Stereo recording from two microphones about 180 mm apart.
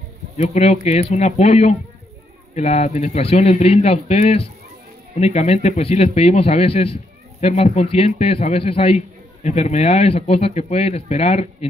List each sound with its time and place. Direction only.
0.4 s speech: 35° left (ahead or behind)